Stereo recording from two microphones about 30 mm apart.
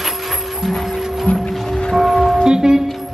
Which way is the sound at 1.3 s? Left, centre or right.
Left.